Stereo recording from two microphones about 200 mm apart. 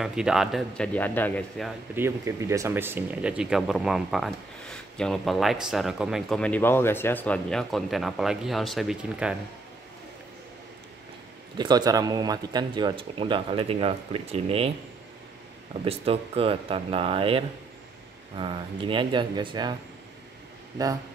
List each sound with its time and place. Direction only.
0.0 s speech: 5° right (ahead or behind)
2.0 s speech: 15° right (ahead or behind)
11.5 s speech: 20° right (ahead or behind)
15.8 s speech: 30° right (ahead or behind)
20.7 s speech: 15° right (ahead or behind)